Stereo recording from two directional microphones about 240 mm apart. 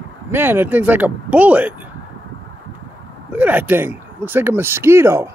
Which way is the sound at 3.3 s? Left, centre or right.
Centre.